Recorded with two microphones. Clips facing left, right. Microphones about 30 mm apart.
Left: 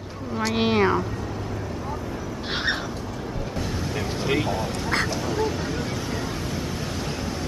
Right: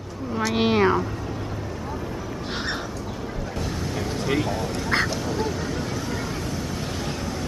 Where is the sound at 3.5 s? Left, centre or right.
Centre.